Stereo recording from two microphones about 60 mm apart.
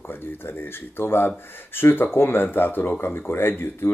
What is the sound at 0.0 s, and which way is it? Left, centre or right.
Speech, left.